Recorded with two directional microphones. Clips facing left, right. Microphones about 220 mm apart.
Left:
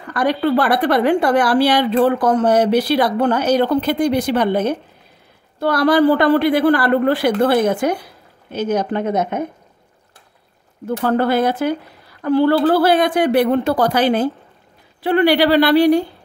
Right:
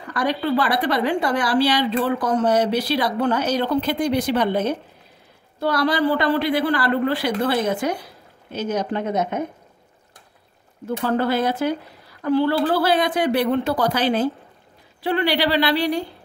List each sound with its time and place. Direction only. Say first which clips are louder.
0.1 s a woman's voice: left 5 dB; 55° left (ahead or behind)
11.1 s a woman's voice: left 4 dB; 55° left (ahead or behind)